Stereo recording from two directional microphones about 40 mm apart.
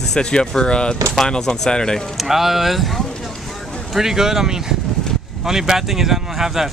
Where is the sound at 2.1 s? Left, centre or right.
Centre.